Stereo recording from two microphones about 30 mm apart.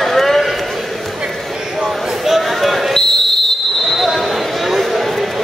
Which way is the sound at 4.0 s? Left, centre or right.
Centre.